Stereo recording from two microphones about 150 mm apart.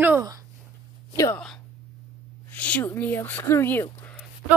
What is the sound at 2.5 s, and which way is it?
Speech, 10° left (ahead or behind).